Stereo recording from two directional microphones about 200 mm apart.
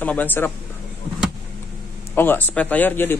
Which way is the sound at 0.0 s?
10° left (ahead or behind).